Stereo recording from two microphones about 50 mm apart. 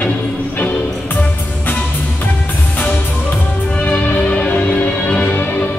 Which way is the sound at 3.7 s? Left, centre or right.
Left.